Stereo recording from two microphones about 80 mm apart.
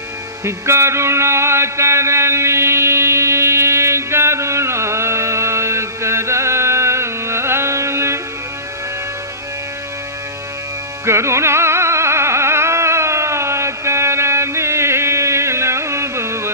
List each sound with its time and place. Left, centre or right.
0.5 s music: right
11.1 s music: right